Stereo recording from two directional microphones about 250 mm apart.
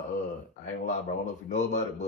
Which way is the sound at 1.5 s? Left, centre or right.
Left.